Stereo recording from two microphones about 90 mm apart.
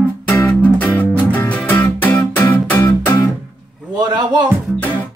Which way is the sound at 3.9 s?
50° right (ahead or behind).